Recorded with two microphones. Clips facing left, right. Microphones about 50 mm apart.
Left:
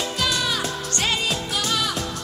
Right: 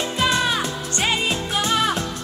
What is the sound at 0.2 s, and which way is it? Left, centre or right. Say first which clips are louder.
Music: right 5 dB; right.